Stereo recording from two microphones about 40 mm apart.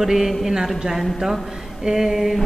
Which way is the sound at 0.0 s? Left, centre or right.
Centre.